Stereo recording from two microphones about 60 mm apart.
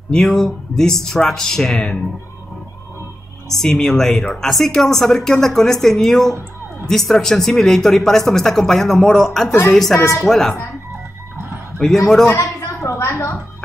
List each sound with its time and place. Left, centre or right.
0.1 s speech: centre
3.5 s speech: centre
9.9 s speech: left
10.2 s speech: centre
11.8 s speech: centre
12.3 s a sound: left